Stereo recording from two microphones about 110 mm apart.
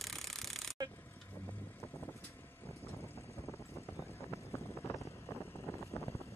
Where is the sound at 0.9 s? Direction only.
20° left (ahead or behind).